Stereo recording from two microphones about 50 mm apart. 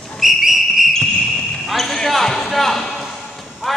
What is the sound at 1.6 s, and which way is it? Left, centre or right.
Basketball bounce, centre.